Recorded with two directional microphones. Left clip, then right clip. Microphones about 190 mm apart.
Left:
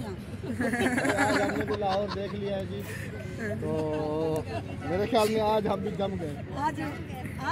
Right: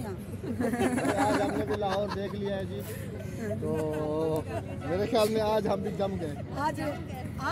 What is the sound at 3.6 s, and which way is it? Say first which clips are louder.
Speech: even; 35° left (ahead or behind).